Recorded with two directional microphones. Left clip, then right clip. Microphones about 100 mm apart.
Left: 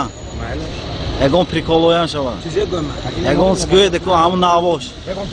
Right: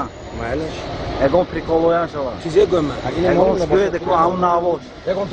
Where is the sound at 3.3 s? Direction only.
30° left (ahead or behind).